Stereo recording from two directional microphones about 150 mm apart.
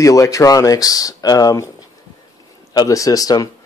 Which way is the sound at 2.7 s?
20° left (ahead or behind).